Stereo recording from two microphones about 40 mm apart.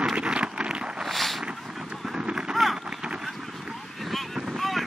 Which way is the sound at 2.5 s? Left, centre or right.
Centre.